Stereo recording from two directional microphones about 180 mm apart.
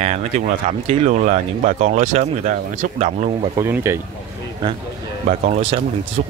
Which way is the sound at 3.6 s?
15° right (ahead or behind).